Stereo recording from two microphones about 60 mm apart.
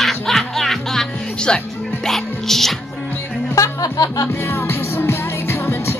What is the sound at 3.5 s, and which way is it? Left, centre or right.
Speech, left.